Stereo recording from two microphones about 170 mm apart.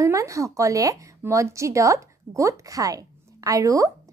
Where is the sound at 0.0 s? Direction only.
20° right (ahead or behind).